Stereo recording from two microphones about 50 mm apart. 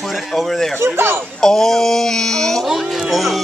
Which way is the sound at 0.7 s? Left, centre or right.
Right.